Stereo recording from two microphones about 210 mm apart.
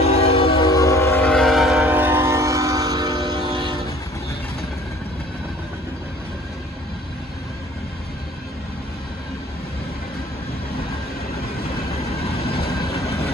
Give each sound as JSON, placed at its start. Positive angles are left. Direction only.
{"t": 0.0, "sound": "train", "side_deg": 30}
{"t": 12.2, "sound": "train", "side_deg": 25}